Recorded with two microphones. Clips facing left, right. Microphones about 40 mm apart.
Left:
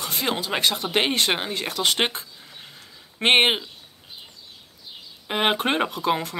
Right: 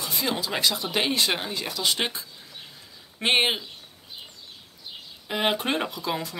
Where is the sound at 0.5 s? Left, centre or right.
Left.